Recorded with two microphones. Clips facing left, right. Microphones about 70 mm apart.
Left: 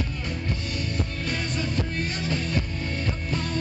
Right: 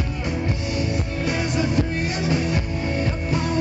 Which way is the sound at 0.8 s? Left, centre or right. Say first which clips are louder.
Right 5 dB; centre.